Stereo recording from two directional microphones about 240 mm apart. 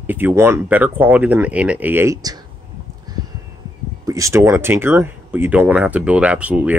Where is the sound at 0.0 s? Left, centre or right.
Centre.